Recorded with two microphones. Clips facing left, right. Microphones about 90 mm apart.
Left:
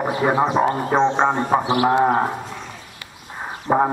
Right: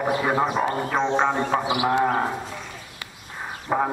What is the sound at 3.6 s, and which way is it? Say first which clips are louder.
Speech: left 6 dB; 25° left (ahead or behind).